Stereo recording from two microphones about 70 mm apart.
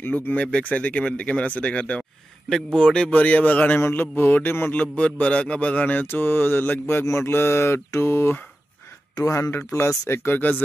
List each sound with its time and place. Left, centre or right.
0.0 s speech: left
3.8 s mantra: left
4.7 s speech: centre
7.1 s mantra: left
9.2 s speech: left
9.5 s mantra: left